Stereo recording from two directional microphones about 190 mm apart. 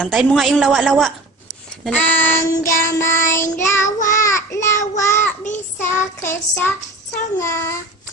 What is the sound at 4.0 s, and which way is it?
Child singing, 45° left (ahead or behind).